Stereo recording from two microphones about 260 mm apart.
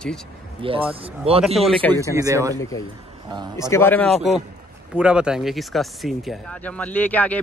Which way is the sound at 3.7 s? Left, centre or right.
Centre.